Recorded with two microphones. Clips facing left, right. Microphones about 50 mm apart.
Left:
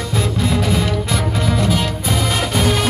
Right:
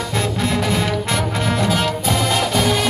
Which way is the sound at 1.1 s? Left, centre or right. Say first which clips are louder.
Left 1 dB; right.